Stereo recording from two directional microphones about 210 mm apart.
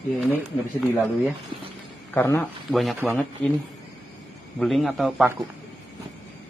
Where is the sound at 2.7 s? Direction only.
Centre (ahead or behind).